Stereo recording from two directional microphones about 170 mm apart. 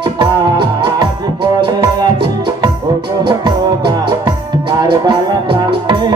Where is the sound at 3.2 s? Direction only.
30° right (ahead or behind).